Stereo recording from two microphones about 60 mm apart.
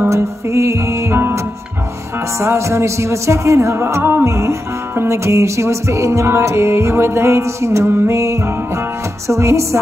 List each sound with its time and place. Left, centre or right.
0.1 s music: right
2.4 s music: right
8.1 s music: right